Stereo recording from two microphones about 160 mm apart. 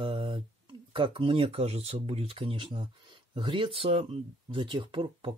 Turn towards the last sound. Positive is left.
turn(degrees=-35)  # may be behind; listen again after turning